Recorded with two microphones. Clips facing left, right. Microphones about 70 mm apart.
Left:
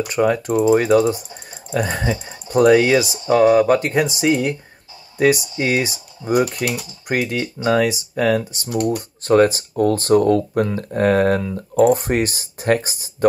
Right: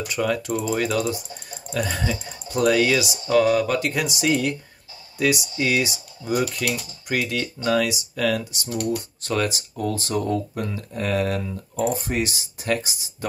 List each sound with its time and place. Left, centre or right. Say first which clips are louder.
0.1 s speech: left 6 dB; left